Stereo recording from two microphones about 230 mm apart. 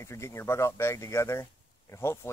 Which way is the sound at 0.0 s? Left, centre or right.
Centre.